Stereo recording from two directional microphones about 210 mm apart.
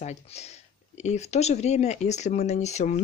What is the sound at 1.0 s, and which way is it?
Speech, 30° left (ahead or behind).